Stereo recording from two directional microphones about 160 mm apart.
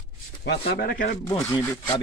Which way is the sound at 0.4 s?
85° left.